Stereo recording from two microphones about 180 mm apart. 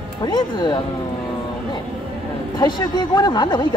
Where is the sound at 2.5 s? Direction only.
25° left (ahead or behind).